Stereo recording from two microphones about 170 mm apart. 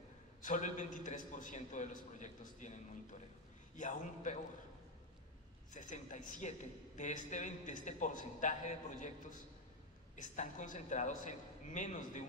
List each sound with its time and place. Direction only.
0.4 s a man's voice: 45° left (ahead or behind)
5.7 s a man's voice: 50° left (ahead or behind)
10.1 s a man's voice: 45° left (ahead or behind)